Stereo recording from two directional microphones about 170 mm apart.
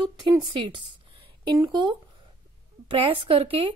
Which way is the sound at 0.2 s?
25° right (ahead or behind).